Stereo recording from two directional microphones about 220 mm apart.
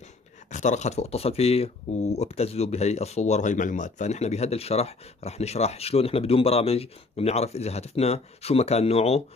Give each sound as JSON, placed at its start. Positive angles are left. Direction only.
{"t": 0.5, "sound": "speech", "side_deg": 30}